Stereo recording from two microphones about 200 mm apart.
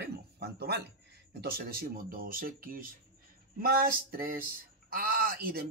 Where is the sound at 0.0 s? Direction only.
50° right (ahead or behind).